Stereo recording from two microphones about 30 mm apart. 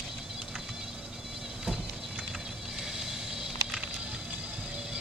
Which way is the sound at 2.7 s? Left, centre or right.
Centre.